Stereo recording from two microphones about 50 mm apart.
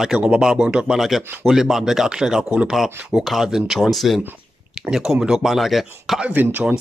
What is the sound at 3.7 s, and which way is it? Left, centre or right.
Speech, centre.